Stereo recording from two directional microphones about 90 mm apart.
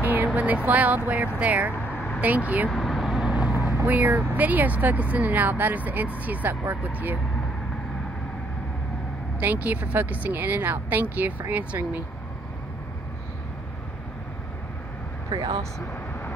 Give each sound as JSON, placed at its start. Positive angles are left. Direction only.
{"t": 0.0, "sound": "speech", "side_deg": -20}
{"t": 2.7, "sound": "vehicle", "side_deg": 0}
{"t": 3.5, "sound": "speech", "side_deg": -30}
{"t": 9.4, "sound": "speech", "side_deg": -20}
{"t": 15.3, "sound": "speech", "side_deg": -45}